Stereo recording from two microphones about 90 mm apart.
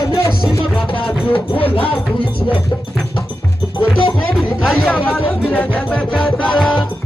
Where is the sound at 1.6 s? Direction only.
90° left.